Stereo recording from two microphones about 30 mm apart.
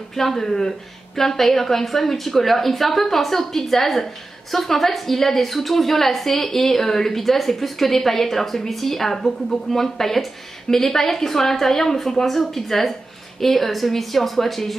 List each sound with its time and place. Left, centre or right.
0.1 s a woman's voice: centre